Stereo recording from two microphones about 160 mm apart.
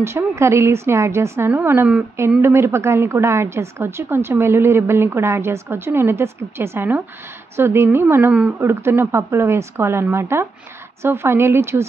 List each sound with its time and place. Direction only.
0.0 s a woman's voice: 15° right (ahead or behind)